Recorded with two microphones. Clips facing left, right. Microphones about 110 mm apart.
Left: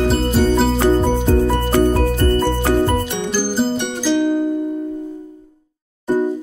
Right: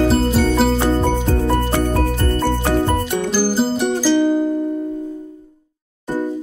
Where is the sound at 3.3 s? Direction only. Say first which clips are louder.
Even; 5° right (ahead or behind).